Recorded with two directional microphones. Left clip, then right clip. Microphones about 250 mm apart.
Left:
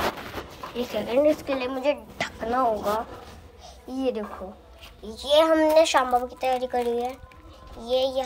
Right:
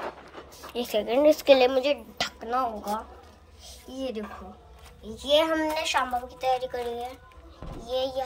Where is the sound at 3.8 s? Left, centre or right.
Centre.